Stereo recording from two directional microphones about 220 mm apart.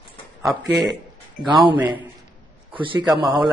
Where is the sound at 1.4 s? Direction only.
20° right (ahead or behind).